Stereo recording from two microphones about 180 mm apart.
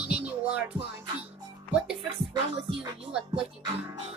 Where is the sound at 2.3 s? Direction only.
25° right (ahead or behind).